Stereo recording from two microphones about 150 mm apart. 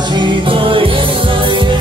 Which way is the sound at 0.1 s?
30° right (ahead or behind).